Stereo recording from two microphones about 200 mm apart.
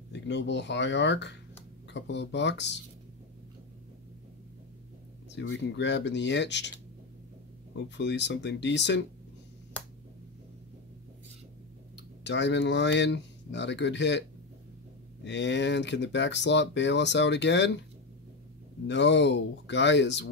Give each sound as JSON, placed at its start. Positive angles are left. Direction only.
{"t": 0.1, "sound": "speech", "side_deg": 60}
{"t": 5.3, "sound": "speech", "side_deg": 65}
{"t": 7.7, "sound": "speech", "side_deg": 60}
{"t": 12.2, "sound": "speech", "side_deg": 60}
{"t": 15.2, "sound": "speech", "side_deg": 60}
{"t": 18.9, "sound": "speech", "side_deg": 60}